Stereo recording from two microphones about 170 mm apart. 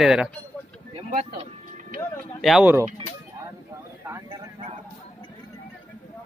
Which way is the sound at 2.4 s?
Centre (ahead or behind).